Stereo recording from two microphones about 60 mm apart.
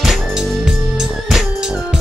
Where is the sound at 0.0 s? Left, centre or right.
Centre.